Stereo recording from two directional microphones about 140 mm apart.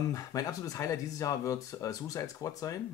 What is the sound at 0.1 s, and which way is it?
Speech, 25° left (ahead or behind).